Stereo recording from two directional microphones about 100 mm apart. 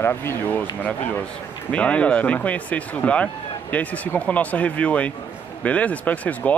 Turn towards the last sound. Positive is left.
turn(degrees=15)  # may be behind; listen again after turning